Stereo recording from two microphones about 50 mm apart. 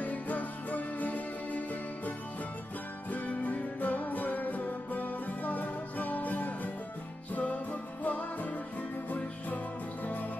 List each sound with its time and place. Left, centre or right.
0.0 s music: left